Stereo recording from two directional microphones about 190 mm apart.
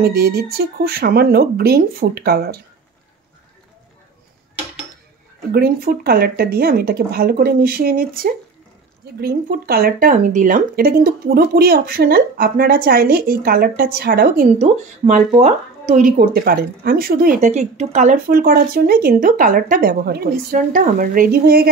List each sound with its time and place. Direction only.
0.0 s speech: 55° right (ahead or behind)
5.5 s speech: 55° right (ahead or behind)
15.0 s speech: 35° right (ahead or behind)
18.4 s speech: 50° right (ahead or behind)